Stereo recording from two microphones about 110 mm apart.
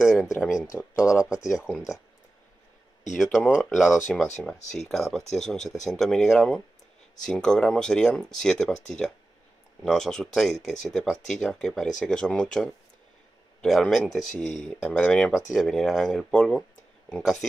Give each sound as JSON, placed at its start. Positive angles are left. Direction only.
{"t": 0.0, "sound": "a sound", "side_deg": -5}
{"t": 1.0, "sound": "speech", "side_deg": 30}
{"t": 1.7, "sound": "speech", "side_deg": -5}
{"t": 3.2, "sound": "speech", "side_deg": -5}